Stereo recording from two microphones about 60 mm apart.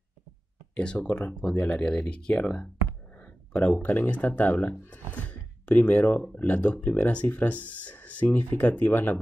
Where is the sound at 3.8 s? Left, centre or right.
Left.